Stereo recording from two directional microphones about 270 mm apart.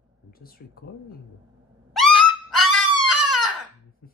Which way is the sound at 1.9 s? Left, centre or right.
Centre.